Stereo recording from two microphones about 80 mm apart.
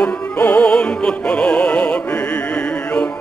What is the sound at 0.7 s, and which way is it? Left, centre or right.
Music, centre.